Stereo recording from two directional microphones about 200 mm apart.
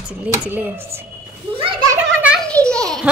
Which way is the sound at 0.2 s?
10° right (ahead or behind).